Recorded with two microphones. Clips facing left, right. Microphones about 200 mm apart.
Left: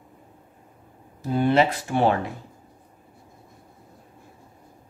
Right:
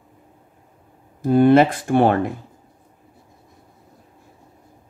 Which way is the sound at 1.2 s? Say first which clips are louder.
Right 7 dB; 50° right (ahead or behind).